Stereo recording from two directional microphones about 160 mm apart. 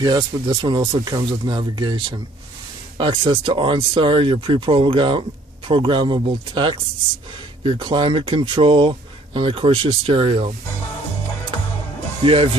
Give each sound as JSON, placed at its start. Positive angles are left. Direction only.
{"t": 0.0, "sound": "speech", "side_deg": -30}
{"t": 12.2, "sound": "speech", "side_deg": -35}